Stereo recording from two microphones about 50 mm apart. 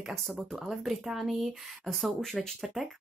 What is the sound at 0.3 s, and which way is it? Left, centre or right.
Speech, centre.